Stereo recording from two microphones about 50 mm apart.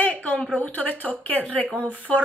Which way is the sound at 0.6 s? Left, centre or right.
Left.